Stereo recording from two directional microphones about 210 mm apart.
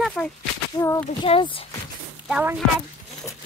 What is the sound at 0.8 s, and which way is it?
Speech, 15° left (ahead or behind).